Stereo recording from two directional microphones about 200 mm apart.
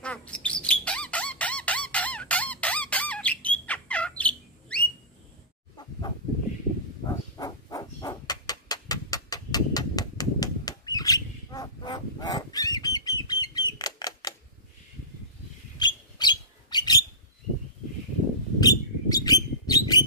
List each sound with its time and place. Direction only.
0.0 s a sound: 5° left (ahead or behind)
4.2 s bird: 5° left (ahead or behind)
5.8 s chicken: 20° left (ahead or behind)
7.1 s a sound: 20° left (ahead or behind)
11.5 s bird flight: 20° left (ahead or behind)
15.8 s rodents: 20° left (ahead or behind)
18.6 s bird: 20° left (ahead or behind)